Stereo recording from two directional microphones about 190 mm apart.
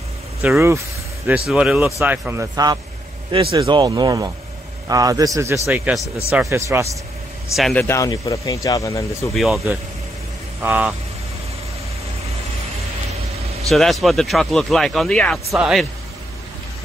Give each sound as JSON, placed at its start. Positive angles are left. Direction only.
{"t": 0.4, "sound": "speech", "side_deg": -10}
{"t": 5.7, "sound": "speech", "side_deg": -5}
{"t": 6.5, "sound": "speech", "side_deg": -15}
{"t": 7.5, "sound": "speech", "side_deg": 0}
{"t": 7.8, "sound": "speech", "side_deg": 15}
{"t": 9.3, "sound": "speech", "side_deg": 0}
{"t": 13.7, "sound": "speech", "side_deg": 0}